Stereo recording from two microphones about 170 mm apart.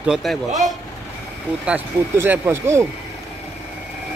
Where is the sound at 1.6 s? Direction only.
10° right (ahead or behind).